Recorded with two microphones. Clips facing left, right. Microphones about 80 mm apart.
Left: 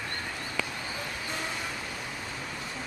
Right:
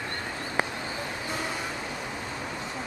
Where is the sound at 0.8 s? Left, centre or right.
Centre.